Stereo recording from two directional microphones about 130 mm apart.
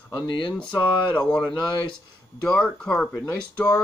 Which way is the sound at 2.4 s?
5° left (ahead or behind).